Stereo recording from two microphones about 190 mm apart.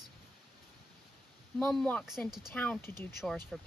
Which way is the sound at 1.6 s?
5° left (ahead or behind).